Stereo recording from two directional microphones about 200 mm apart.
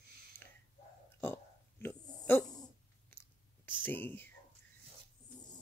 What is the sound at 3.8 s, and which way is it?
Speech, 10° left (ahead or behind).